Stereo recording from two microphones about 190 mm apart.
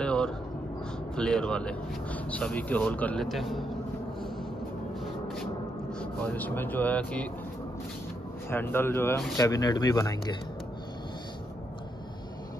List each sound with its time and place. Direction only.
0.0 s a sound: 5° left (ahead or behind)
1.1 s speech: 5° left (ahead or behind)
5.9 s speech: 10° left (ahead or behind)
8.5 s speech: 10° left (ahead or behind)